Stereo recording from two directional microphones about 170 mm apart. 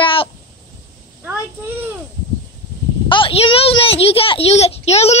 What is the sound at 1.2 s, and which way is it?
Speech, 10° right (ahead or behind).